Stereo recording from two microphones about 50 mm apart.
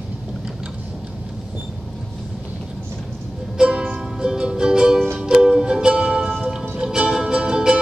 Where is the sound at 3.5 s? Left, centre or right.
Centre.